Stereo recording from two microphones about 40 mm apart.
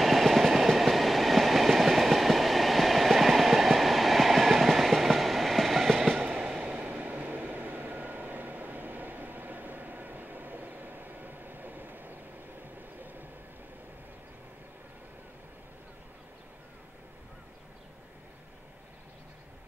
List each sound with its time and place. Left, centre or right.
0.0 s train: centre
6.2 s train: right
6.8 s vehicle: right